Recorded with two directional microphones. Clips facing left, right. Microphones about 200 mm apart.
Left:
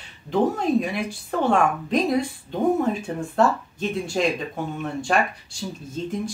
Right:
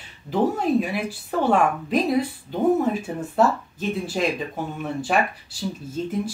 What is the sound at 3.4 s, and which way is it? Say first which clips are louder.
Speech: even; 5° right (ahead or behind).